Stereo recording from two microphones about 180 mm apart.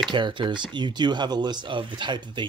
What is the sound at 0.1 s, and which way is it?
Speech, 25° right (ahead or behind).